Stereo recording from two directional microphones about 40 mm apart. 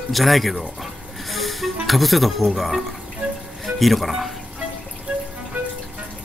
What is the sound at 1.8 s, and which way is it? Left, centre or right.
Speech, centre.